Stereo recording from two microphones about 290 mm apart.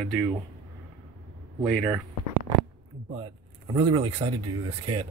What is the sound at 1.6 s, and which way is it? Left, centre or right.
Speech, centre.